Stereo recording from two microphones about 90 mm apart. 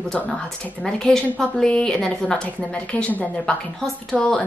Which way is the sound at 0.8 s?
5° left (ahead or behind).